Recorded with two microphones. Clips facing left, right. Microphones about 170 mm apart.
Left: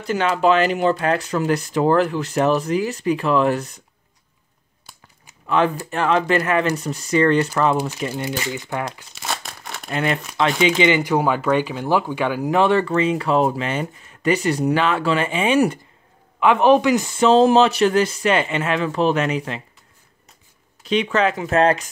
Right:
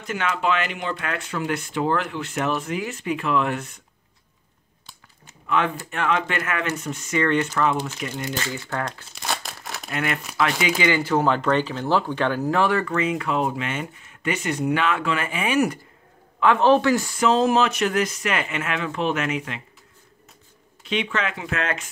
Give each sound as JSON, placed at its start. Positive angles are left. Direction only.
{"t": 0.0, "sound": "speech", "side_deg": 35}
{"t": 5.5, "sound": "speech", "side_deg": 35}
{"t": 8.5, "sound": "speech", "side_deg": 15}
{"t": 9.1, "sound": "crumpling", "side_deg": 0}
{"t": 9.8, "sound": "speech", "side_deg": 30}
{"t": 16.3, "sound": "speech", "side_deg": 15}
{"t": 20.8, "sound": "speech", "side_deg": 40}